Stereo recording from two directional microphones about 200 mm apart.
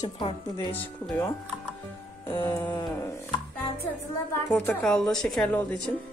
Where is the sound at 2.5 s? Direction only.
10° left (ahead or behind).